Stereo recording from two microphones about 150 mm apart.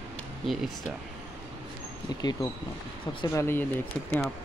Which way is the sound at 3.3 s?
15° left (ahead or behind).